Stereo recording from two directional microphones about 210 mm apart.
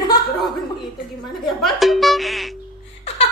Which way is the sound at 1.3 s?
Centre (ahead or behind).